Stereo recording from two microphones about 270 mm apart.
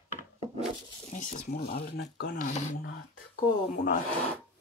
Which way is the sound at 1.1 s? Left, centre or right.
Left.